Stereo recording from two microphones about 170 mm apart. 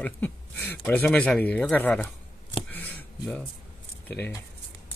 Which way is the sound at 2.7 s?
10° left (ahead or behind).